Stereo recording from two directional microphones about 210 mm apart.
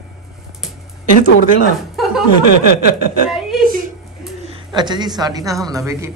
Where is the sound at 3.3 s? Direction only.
Centre (ahead or behind).